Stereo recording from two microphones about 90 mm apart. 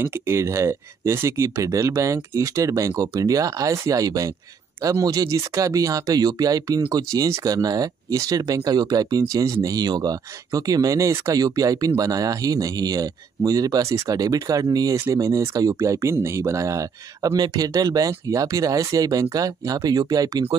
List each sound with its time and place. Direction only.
0.0 s speech: 30° right (ahead or behind)
15.0 s speech: 35° right (ahead or behind)